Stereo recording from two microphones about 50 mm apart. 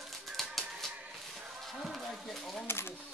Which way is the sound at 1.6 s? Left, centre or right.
Centre.